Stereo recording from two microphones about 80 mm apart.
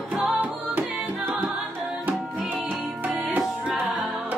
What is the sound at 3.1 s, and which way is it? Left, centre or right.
Music, right.